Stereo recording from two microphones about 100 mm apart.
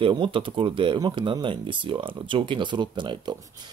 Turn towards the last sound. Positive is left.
turn(degrees=-50)  # may be behind; listen again after turning